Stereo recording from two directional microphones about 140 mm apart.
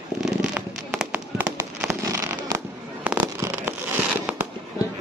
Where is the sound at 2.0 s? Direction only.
25° right (ahead or behind).